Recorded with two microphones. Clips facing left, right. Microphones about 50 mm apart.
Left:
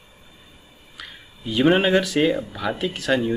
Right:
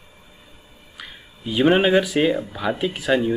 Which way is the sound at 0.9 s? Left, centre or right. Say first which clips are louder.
Even; centre.